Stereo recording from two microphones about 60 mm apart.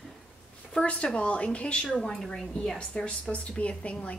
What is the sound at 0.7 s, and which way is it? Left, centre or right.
A woman's voice, centre.